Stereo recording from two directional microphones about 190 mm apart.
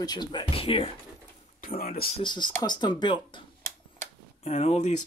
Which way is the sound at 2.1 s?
25° left (ahead or behind).